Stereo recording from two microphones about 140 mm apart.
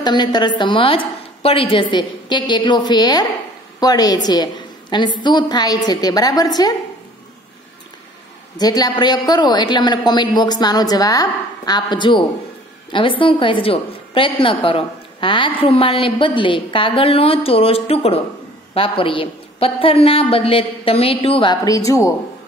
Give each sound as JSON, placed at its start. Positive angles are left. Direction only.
{"t": 0.0, "sound": "a woman's voice", "side_deg": 30}
{"t": 8.5, "sound": "a woman's voice", "side_deg": 30}
{"t": 21.6, "sound": "speech", "side_deg": 25}